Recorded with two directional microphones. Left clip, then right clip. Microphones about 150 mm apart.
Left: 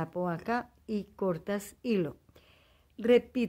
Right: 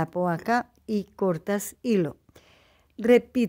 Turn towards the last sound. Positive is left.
turn(degrees=-35)  # may be behind; listen again after turning